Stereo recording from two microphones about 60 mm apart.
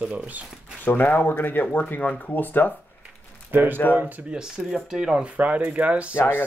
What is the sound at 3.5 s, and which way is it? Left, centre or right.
Speech, right.